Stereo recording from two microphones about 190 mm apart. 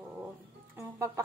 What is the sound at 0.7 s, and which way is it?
Speech, 15° right (ahead or behind).